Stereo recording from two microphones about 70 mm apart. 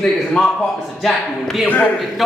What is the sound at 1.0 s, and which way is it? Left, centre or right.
Speech, centre.